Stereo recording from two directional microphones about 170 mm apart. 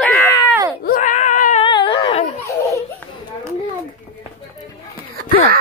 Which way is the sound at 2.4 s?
15° left (ahead or behind).